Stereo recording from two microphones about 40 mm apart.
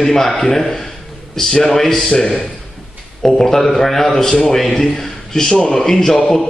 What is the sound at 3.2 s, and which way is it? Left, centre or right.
A man's voice, centre.